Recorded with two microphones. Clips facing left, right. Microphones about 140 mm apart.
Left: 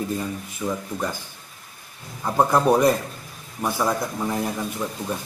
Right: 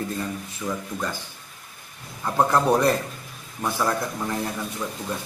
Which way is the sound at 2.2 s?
15° left (ahead or behind).